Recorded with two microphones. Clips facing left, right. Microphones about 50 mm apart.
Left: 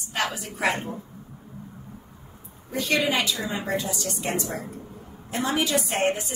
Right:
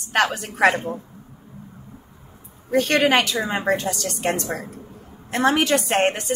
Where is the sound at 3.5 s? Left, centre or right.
Right.